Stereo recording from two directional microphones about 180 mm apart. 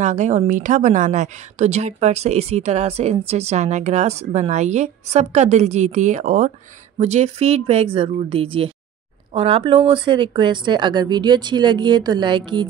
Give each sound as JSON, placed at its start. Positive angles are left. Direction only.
{"t": 0.0, "sound": "a woman's voice", "side_deg": -40}